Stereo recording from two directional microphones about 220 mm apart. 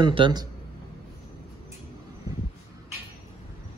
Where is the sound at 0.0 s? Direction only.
20° right (ahead or behind).